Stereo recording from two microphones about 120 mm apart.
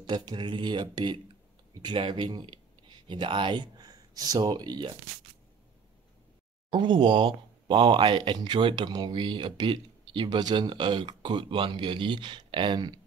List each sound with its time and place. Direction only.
0.0 s speech: 35° right (ahead or behind)
6.7 s speech: 40° right (ahead or behind)